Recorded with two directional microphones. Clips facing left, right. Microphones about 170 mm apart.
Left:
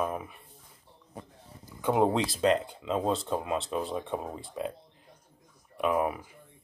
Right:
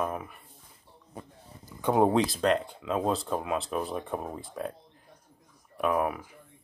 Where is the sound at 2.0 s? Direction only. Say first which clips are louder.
Right 1 dB; centre (ahead or behind).